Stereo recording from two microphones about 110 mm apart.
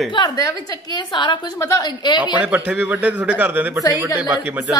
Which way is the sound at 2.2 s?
15° right (ahead or behind).